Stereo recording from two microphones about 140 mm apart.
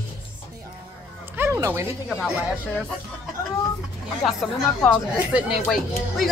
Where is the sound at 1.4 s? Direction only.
20° right (ahead or behind).